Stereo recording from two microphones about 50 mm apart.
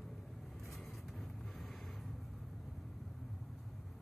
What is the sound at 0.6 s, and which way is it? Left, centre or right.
Vehicle, centre.